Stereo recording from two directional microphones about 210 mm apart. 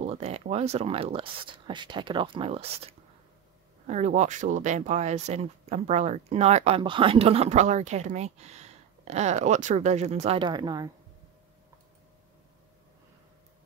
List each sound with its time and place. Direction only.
0.0 s speech: 30° right (ahead or behind)